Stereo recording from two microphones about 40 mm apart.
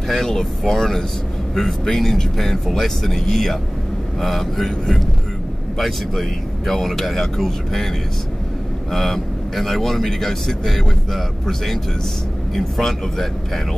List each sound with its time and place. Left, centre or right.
0.1 s speech: centre
8.9 s speech: centre